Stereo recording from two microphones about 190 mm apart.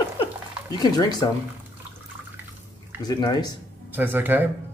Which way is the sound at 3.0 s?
20° left (ahead or behind).